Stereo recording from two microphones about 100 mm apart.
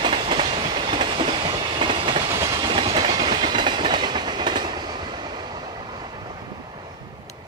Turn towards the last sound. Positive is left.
turn(degrees=-45)  # may be behind; listen again after turning